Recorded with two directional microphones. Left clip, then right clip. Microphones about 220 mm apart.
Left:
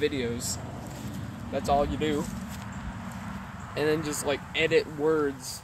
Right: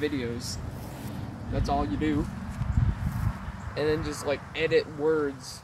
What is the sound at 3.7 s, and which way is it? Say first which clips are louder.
Speech: left 1 dB; 50° left (ahead or behind).